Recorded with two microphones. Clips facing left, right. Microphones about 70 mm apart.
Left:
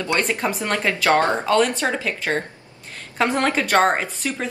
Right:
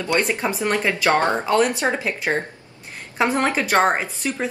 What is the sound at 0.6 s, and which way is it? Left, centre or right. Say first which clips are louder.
A woman's voice: right 1 dB; centre.